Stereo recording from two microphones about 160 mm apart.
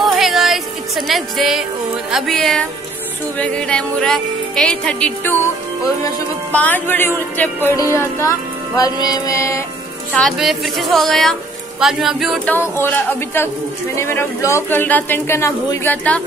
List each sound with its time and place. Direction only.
0.0 s music: centre (ahead or behind)
2.0 s speech: centre (ahead or behind)
6.5 s speech: 10° left (ahead or behind)
7.7 s music: 20° left (ahead or behind)
10.1 s speech: centre (ahead or behind)
12.4 s speech: 15° left (ahead or behind)